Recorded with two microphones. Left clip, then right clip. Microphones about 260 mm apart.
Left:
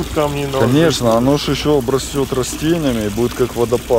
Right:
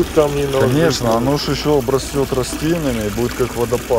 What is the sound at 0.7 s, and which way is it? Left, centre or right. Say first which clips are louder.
Speech: left 2 dB; centre.